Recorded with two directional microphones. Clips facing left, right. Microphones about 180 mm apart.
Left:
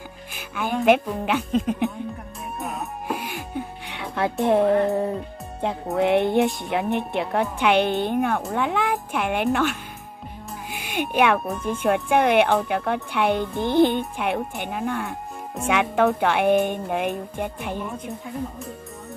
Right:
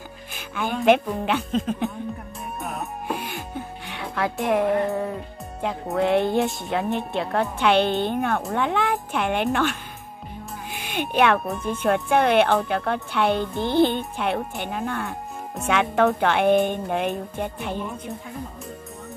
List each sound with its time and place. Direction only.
0.4 s a woman's voice: 5° left (ahead or behind)
2.6 s music: 5° left (ahead or behind); by 4.7 s 30° left (ahead or behind)
5.9 s a woman's voice: 20° left (ahead or behind)